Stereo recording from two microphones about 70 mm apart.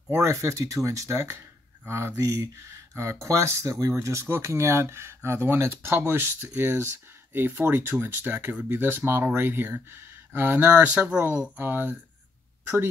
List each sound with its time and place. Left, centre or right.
0.1 s speech: right